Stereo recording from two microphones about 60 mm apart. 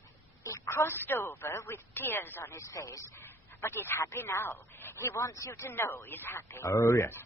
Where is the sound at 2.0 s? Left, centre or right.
Left.